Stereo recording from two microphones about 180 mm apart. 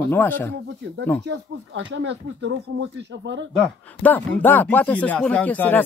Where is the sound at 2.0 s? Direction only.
85° right.